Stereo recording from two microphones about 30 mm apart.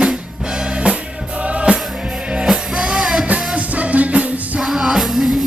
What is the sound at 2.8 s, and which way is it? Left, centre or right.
Music, centre.